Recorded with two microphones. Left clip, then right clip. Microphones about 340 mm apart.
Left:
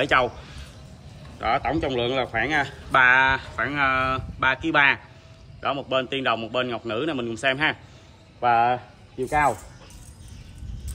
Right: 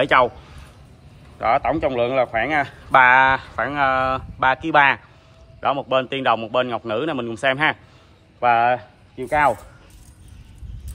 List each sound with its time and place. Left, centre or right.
0.0 s a man's voice: centre
1.4 s a man's voice: centre